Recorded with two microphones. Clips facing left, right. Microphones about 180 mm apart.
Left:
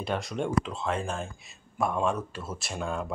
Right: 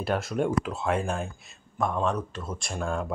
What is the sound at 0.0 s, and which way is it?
Speech, 5° right (ahead or behind).